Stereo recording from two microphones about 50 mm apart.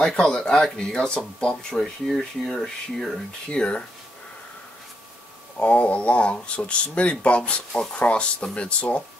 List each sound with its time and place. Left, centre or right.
0.0 s speech: centre
3.4 s speech: left
5.6 s speech: left